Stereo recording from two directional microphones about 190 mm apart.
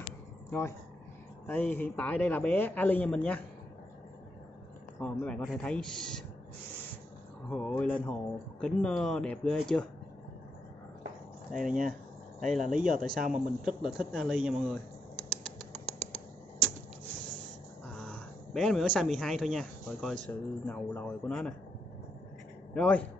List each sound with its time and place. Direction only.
0.5 s a man's voice: 15° left (ahead or behind)
5.0 s speech: 5° left (ahead or behind)
7.4 s speech: 5° left (ahead or behind)
11.5 s speech: centre (ahead or behind)
12.7 s speech: 45° right (ahead or behind)
13.3 s speech: centre (ahead or behind)
17.8 s speech: 5° left (ahead or behind)
22.8 s a man's voice: 5° left (ahead or behind)